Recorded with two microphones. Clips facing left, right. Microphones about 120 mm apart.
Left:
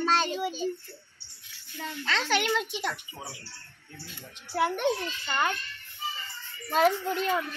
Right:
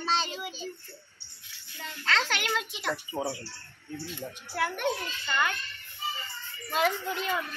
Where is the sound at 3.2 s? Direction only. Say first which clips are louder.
Right 11 dB; 50° right (ahead or behind).